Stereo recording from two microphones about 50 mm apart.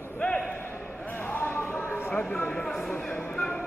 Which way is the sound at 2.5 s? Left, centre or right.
Centre.